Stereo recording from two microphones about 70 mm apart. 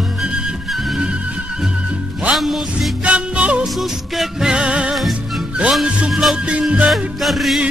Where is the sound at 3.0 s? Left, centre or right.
Centre.